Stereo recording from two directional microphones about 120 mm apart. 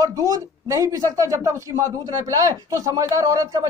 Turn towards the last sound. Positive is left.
turn(degrees=-30)  # may be behind; listen again after turning